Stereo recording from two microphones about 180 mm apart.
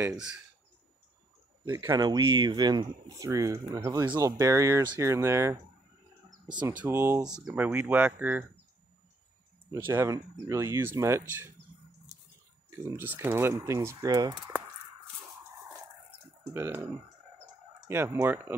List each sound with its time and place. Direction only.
0.1 s speech: 5° right (ahead or behind)
1.6 s speech: 15° right (ahead or behind)
6.3 s a sound: 25° right (ahead or behind)
6.8 s speech: 10° right (ahead or behind)
7.2 s speech: 5° right (ahead or behind)
9.8 s speech: 15° right (ahead or behind)
12.6 s speech: 15° right (ahead or behind)
16.5 s speech: 15° right (ahead or behind)